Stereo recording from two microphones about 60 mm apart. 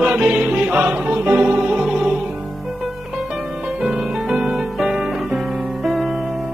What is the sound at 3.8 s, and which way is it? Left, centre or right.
Music, centre.